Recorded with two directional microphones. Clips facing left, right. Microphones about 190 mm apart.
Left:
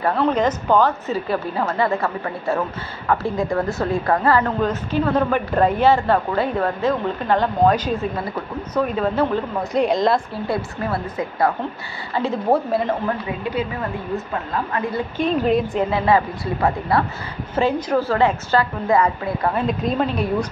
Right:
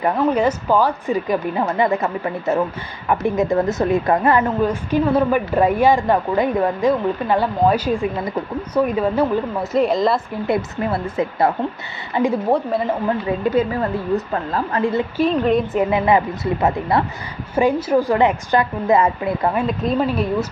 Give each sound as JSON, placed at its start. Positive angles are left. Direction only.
{"t": 0.0, "sound": "a woman's voice", "side_deg": -10}
{"t": 10.4, "sound": "speech", "side_deg": -20}
{"t": 12.5, "sound": "speech", "side_deg": 5}
{"t": 14.1, "sound": "a woman's voice", "side_deg": -35}
{"t": 15.1, "sound": "speech", "side_deg": 0}
{"t": 15.8, "sound": "a woman's voice", "side_deg": -15}
{"t": 17.6, "sound": "a woman's voice", "side_deg": -10}
{"t": 19.5, "sound": "speech", "side_deg": 0}